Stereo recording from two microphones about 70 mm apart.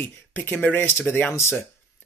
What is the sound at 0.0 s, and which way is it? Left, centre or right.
Speech, left.